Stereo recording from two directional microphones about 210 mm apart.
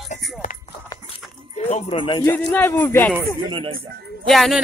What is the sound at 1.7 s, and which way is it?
Speech, 25° left (ahead or behind).